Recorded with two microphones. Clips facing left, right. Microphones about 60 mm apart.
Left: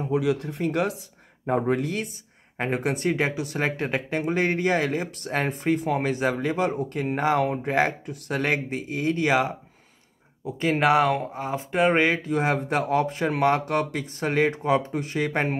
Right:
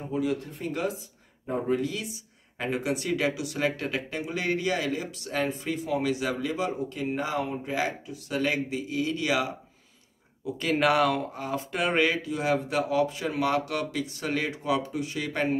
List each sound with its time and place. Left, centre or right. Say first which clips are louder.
0.1 s speech: left 4 dB; left
4.1 s speech: left 7 dB; left
10.4 s speech: left 2 dB; left
12.2 s speech: left 3 dB; left